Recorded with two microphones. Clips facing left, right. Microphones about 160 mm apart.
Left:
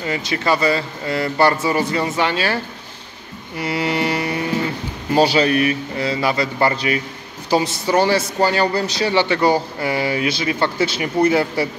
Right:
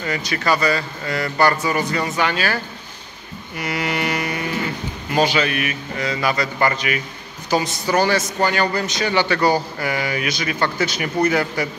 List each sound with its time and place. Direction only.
0.0 s a man's voice: 25° left (ahead or behind)
3.5 s mantra: 25° left (ahead or behind)
5.1 s a man's voice: 35° left (ahead or behind)